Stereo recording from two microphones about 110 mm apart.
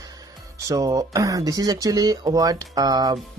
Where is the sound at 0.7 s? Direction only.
30° right (ahead or behind).